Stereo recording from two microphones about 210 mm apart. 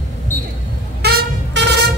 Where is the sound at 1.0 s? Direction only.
50° right (ahead or behind).